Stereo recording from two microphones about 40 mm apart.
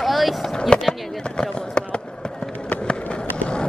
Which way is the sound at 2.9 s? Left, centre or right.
Left.